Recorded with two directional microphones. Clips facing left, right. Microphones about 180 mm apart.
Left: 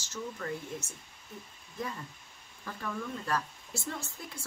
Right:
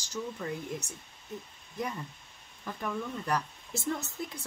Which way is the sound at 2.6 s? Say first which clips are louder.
Right 2 dB; 15° right (ahead or behind).